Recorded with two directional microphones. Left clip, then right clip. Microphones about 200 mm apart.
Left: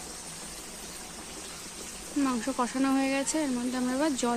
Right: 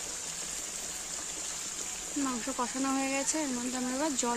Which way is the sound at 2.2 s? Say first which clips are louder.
Left 4 dB; 5° left (ahead or behind).